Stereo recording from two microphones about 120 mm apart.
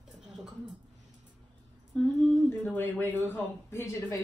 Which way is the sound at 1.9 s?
10° left (ahead or behind).